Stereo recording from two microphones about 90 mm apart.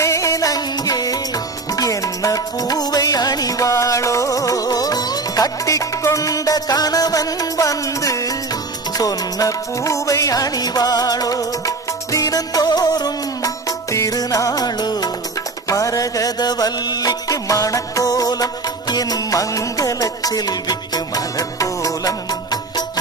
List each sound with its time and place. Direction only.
0.0 s music: 35° left (ahead or behind)